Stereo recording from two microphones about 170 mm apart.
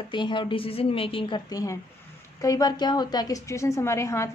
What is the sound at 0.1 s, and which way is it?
A woman's voice, 30° left (ahead or behind).